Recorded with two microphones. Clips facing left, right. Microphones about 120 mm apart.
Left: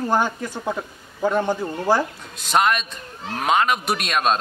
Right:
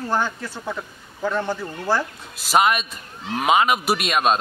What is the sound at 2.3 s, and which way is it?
A man's voice, 5° right (ahead or behind).